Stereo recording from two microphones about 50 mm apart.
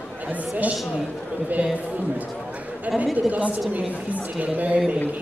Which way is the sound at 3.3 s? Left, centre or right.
Right.